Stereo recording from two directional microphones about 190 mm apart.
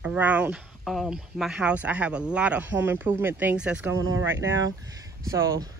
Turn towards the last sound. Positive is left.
turn(degrees=-15)  # may be behind; listen again after turning